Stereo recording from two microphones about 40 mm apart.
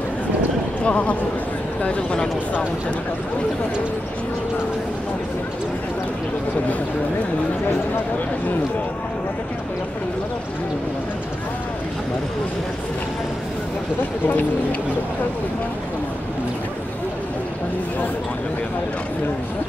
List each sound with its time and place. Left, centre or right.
0.8 s speech: left
14.2 s speech: left